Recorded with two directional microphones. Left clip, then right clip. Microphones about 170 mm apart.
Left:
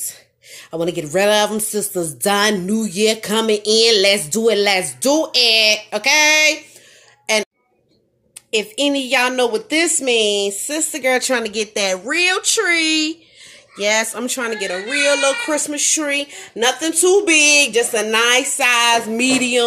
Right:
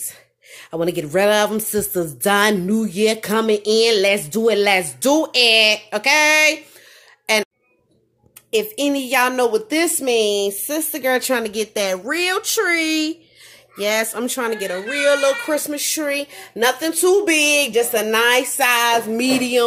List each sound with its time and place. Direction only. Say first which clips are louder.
0.1 s speech: left 2 dB; 5° right (ahead or behind)
5.0 s speech: left 1 dB; 15° right (ahead or behind)
5.3 s speech: even; 5° right (ahead or behind)
8.5 s speech: left 1 dB; centre (ahead or behind)